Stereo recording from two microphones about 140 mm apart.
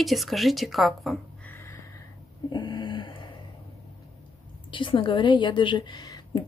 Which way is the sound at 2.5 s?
30° left (ahead or behind).